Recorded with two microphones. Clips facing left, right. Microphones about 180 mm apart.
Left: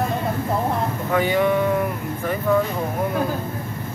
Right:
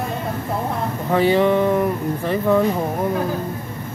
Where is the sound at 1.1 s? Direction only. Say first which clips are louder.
Right 4 dB; 30° right (ahead or behind).